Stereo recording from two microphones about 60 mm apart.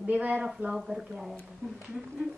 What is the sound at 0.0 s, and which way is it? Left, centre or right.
Speech, right.